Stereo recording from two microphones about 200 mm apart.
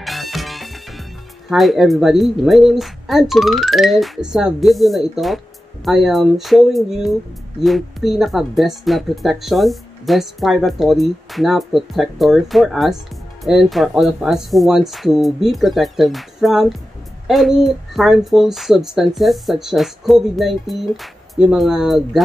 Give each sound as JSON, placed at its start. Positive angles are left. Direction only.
{"t": 0.0, "sound": "music", "side_deg": 0}
{"t": 1.5, "sound": "speech", "side_deg": 0}